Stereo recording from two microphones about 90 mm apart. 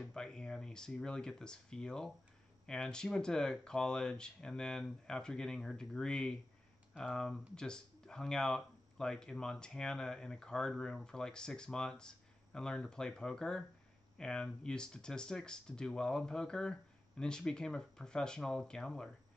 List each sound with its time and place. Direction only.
0.1 s speech: 10° left (ahead or behind)